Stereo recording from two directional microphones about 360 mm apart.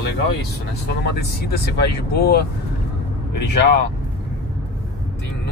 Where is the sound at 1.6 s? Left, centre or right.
Left.